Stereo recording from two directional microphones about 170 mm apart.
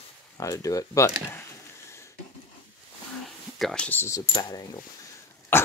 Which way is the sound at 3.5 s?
5° left (ahead or behind).